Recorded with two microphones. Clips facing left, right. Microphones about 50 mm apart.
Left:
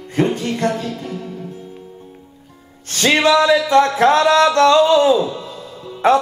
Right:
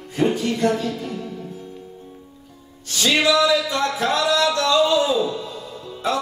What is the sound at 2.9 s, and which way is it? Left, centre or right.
Music, left.